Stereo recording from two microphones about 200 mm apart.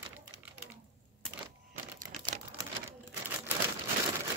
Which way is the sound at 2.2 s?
15° right (ahead or behind).